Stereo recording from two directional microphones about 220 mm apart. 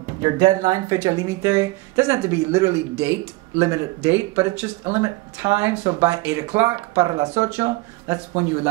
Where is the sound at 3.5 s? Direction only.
15° right (ahead or behind).